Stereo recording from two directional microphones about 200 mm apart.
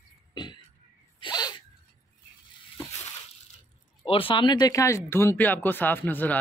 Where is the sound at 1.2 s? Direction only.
20° left (ahead or behind).